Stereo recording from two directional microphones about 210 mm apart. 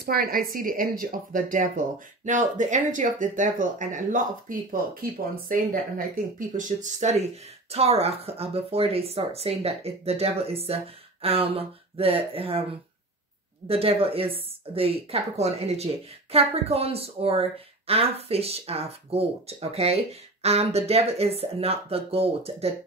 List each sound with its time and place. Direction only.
0.0 s speech: 45° right (ahead or behind); by 12.6 s 25° right (ahead or behind)
13.7 s speech: 25° right (ahead or behind)